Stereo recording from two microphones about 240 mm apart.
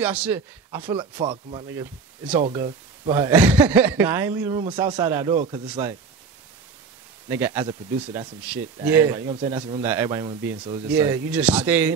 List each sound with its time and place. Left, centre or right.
0.0 s speech: centre
0.9 s speech: right
1.7 s speech: centre
7.2 s speech: centre